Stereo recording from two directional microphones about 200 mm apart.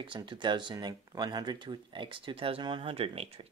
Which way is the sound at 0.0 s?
25° right (ahead or behind).